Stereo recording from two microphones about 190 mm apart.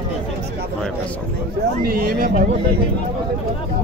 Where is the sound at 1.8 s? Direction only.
50° right (ahead or behind).